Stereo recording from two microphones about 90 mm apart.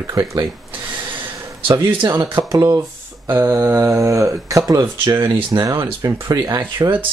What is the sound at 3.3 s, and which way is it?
Speech, 25° right (ahead or behind).